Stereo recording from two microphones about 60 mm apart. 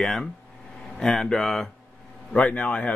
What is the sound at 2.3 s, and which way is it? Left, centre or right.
Speech, left.